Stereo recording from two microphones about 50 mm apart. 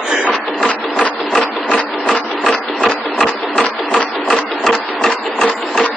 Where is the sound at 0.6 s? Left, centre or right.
Centre.